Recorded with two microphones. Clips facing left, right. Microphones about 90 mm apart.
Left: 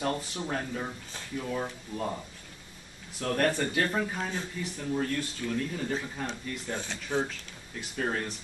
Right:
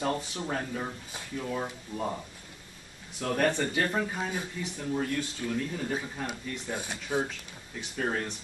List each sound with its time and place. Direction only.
0.0 s speech: centre (ahead or behind)